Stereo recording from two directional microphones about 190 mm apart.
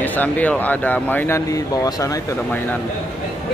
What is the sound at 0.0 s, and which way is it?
Speech, 10° left (ahead or behind).